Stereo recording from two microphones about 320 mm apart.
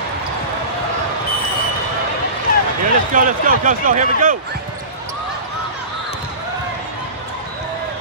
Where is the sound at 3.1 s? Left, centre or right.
Right.